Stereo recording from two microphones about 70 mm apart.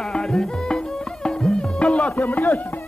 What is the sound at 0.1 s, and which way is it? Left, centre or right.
Music, centre.